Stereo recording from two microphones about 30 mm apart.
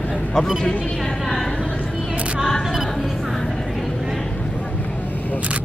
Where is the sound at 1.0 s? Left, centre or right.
Centre.